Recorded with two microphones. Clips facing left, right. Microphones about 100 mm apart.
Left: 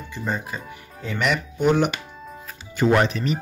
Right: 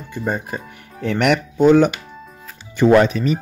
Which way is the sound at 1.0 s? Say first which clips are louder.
Right 7 dB; 70° right (ahead or behind).